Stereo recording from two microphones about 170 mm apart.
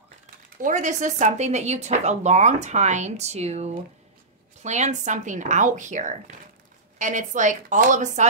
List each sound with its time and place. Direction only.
0.6 s speech: 50° right (ahead or behind)